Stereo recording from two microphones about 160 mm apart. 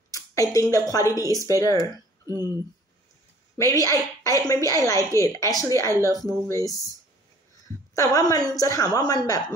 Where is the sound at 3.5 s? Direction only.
20° left (ahead or behind).